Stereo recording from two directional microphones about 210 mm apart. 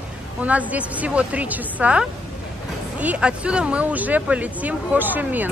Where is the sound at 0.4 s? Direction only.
5° right (ahead or behind).